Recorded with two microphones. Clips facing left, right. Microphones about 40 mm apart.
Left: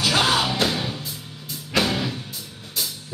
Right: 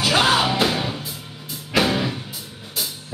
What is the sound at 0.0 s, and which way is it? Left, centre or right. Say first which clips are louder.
Music: right 2 dB; centre.